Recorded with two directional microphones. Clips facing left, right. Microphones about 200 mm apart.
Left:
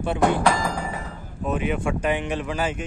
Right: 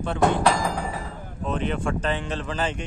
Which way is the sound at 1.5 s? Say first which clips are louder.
Left 2 dB; 10° left (ahead or behind).